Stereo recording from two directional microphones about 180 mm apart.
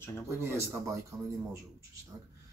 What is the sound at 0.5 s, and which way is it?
Speech, 15° right (ahead or behind).